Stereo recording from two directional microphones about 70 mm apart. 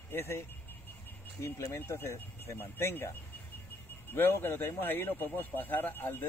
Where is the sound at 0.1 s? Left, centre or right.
Left.